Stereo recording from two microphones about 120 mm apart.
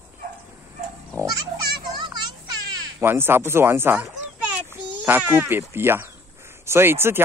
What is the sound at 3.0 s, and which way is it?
Speech, 20° right (ahead or behind).